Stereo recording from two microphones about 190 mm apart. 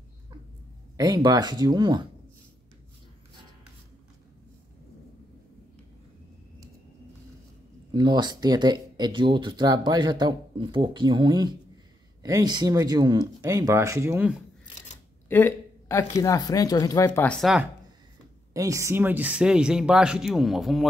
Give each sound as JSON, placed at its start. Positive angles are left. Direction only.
{"t": 0.9, "sound": "speech", "side_deg": -20}
{"t": 7.9, "sound": "speech", "side_deg": -20}
{"t": 15.2, "sound": "a sound", "side_deg": 10}
{"t": 16.2, "sound": "speech", "side_deg": 20}
{"t": 18.5, "sound": "speech", "side_deg": -15}